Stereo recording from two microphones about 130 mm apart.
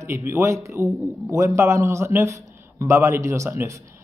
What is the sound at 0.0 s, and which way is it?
A man's voice, 20° right (ahead or behind).